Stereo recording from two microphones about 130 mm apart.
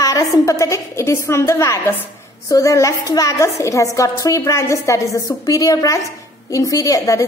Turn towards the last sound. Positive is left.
turn(degrees=25)  # may be behind; listen again after turning